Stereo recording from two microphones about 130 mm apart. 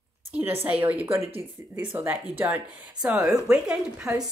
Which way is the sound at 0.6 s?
15° right (ahead or behind).